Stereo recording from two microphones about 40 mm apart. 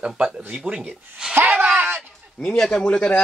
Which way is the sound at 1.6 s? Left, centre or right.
Right.